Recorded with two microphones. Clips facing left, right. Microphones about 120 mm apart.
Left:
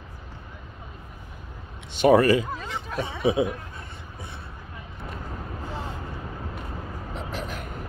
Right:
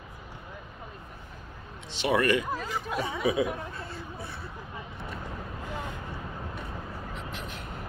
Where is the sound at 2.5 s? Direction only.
5° right (ahead or behind).